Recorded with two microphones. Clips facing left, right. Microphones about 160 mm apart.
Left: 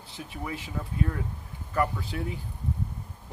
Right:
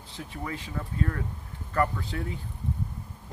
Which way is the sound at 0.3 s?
15° left (ahead or behind).